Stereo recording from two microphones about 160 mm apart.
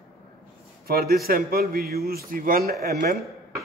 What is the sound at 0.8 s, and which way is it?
A man's voice, 70° right (ahead or behind).